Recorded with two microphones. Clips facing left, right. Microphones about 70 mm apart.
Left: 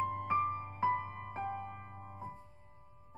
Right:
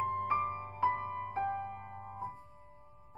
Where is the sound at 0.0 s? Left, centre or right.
Centre.